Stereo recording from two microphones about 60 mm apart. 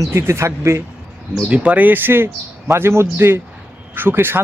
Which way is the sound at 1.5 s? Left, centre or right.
Right.